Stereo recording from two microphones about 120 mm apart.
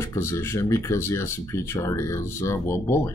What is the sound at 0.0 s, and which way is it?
Speech, 20° left (ahead or behind).